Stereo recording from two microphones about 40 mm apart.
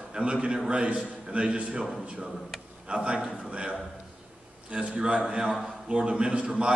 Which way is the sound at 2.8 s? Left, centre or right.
Right.